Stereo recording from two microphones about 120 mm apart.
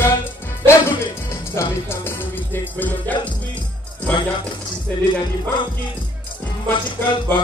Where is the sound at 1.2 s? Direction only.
20° left (ahead or behind).